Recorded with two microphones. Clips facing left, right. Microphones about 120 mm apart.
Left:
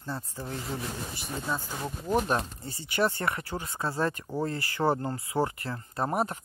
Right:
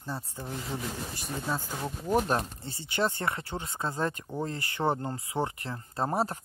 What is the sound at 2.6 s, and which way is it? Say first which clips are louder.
Speech: left 2 dB; 25° right (ahead or behind).